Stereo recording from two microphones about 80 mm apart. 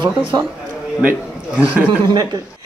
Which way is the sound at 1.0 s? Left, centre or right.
Centre.